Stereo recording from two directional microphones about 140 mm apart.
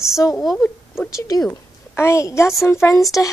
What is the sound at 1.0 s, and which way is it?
A woman's voice, 20° left (ahead or behind).